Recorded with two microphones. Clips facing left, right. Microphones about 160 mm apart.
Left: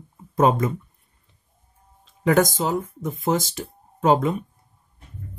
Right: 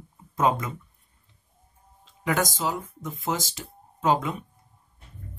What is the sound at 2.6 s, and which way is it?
Speech, 50° left (ahead or behind).